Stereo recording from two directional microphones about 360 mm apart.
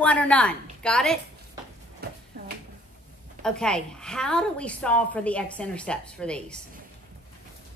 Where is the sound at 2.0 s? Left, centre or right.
Right.